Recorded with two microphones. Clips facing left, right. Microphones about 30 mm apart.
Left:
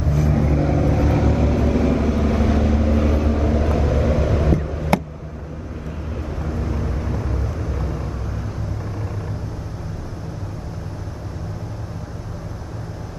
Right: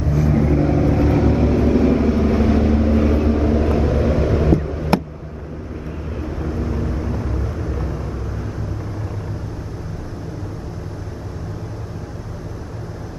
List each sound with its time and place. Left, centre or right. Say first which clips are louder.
0.3 s vehicle: right 4 dB; centre
1.5 s vehicle: right 3 dB; centre
4.6 s a sound: right 2 dB; centre
6.2 s vehicle: right 3 dB; centre